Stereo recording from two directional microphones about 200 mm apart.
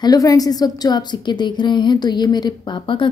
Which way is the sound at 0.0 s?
20° left (ahead or behind).